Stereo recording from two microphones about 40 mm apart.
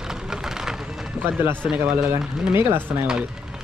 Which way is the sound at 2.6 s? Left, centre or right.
Right.